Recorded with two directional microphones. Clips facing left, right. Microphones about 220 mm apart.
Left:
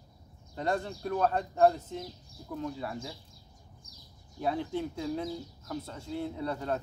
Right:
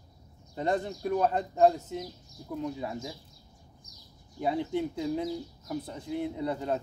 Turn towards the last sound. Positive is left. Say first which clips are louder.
# right 2 dB
turn(degrees=-15)  # may be behind; listen again after turning